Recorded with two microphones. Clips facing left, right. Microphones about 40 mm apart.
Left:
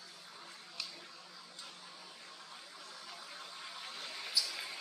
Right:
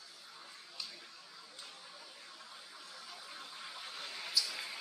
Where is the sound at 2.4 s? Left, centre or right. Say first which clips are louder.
Left 1 dB; centre.